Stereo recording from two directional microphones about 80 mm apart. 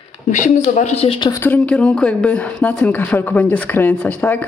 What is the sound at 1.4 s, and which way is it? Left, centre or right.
Speech, centre.